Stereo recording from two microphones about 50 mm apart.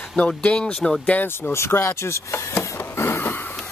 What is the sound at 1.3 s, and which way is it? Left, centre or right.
Speech, left.